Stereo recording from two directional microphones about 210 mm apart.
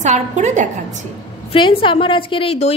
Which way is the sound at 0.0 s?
35° right (ahead or behind).